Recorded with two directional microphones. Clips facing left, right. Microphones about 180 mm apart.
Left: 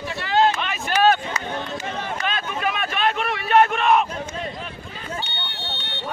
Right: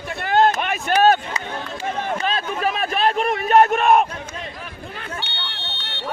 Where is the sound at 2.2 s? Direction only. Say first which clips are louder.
Right 1 dB; 35° right (ahead or behind).